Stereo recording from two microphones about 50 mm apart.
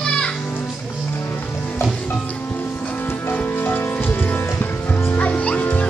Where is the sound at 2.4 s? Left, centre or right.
Left.